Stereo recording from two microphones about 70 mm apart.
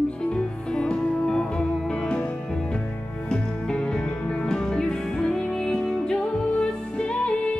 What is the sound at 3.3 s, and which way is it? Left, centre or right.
Music, centre.